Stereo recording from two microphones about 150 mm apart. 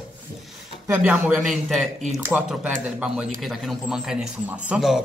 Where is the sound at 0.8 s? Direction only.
15° right (ahead or behind).